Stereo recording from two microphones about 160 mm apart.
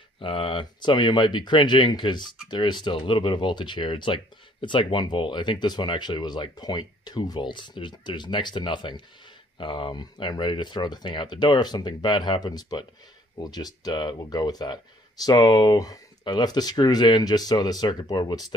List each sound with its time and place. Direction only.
0.2 s speech: 35° left (ahead or behind)